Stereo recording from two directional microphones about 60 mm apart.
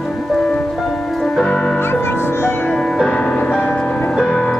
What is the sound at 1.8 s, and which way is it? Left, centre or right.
Music, left.